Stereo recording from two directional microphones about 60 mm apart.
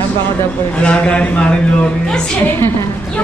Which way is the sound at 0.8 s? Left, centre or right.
Left.